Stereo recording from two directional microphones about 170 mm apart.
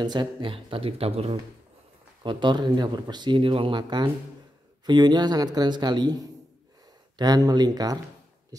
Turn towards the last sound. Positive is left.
turn(degrees=-20)  # may be behind; listen again after turning